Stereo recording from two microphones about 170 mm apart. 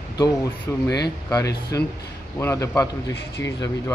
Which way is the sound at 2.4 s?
15° left (ahead or behind).